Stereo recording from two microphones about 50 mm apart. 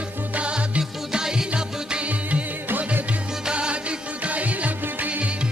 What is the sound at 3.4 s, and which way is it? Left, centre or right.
Music, centre.